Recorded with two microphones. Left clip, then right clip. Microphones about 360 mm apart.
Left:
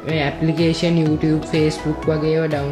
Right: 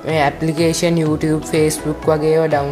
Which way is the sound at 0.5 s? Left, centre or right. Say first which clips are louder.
Even; centre.